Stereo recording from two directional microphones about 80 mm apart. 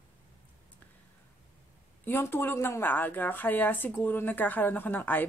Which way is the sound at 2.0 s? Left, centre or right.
Left.